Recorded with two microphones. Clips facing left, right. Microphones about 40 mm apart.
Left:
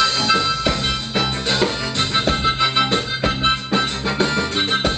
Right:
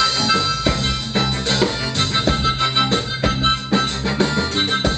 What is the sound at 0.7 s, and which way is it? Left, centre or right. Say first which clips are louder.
Music: even; centre.